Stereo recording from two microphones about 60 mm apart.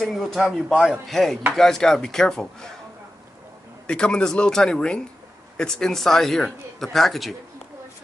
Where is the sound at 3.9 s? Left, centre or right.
Centre.